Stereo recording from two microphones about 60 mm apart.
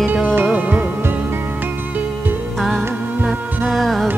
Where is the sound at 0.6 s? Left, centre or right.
Right.